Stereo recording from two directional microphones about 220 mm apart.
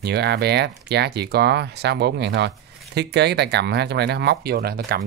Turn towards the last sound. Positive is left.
turn(degrees=-45)  # may be behind; listen again after turning